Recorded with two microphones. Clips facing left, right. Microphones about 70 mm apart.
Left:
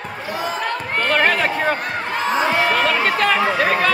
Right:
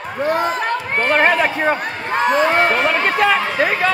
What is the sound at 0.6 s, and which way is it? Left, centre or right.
Run, right.